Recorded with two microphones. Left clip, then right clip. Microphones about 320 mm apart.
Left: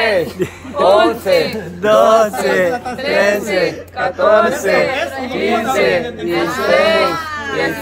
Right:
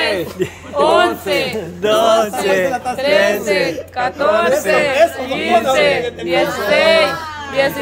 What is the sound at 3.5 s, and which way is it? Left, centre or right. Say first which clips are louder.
Speech: even; right.